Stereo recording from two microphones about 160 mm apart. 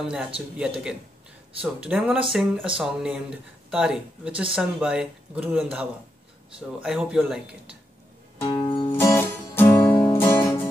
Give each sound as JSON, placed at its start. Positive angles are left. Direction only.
{"t": 0.0, "sound": "speech", "side_deg": -5}
{"t": 1.6, "sound": "speech", "side_deg": -5}
{"t": 8.4, "sound": "music", "side_deg": 30}
{"t": 8.9, "sound": "music", "side_deg": 15}